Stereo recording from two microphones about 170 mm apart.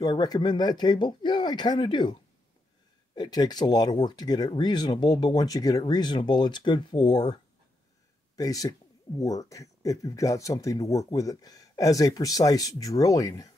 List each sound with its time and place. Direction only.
0.0 s speech: 25° left (ahead or behind)
3.2 s speech: 25° left (ahead or behind)
8.4 s speech: 20° left (ahead or behind)